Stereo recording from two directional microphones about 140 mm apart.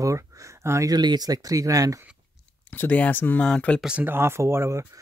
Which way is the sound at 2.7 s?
10° left (ahead or behind).